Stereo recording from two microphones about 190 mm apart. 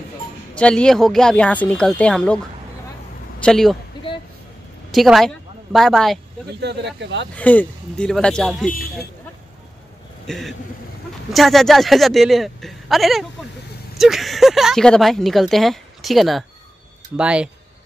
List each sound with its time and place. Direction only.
0.6 s speech: 5° left (ahead or behind)
3.4 s speech: centre (ahead or behind)
4.9 s a woman's voice: centre (ahead or behind)
6.6 s speech: 60° right (ahead or behind)
7.3 s speech: 10° left (ahead or behind)
10.2 s a man's voice: centre (ahead or behind)